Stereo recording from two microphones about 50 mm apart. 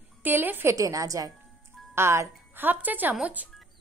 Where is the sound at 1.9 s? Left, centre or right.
Right.